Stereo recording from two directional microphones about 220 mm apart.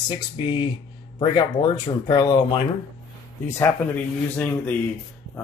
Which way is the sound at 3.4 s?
15° left (ahead or behind).